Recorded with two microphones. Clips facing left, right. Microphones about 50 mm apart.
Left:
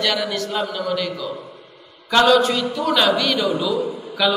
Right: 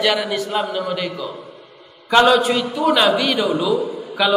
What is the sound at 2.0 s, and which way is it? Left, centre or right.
A man's voice, centre.